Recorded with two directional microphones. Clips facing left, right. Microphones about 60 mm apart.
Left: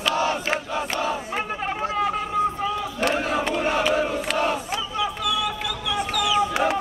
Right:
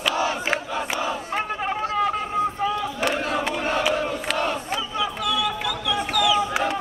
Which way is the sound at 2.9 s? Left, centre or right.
Centre.